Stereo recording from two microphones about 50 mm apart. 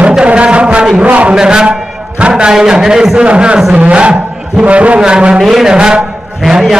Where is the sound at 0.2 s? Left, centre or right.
Right.